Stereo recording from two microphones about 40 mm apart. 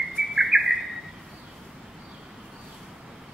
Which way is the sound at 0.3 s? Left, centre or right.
Centre.